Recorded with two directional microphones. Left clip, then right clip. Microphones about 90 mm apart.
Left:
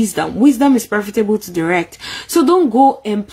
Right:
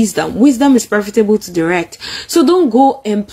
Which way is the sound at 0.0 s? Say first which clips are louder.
Right 2 dB; 15° left (ahead or behind).